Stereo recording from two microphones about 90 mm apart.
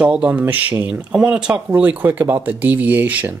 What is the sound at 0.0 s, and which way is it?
Speech, 15° right (ahead or behind).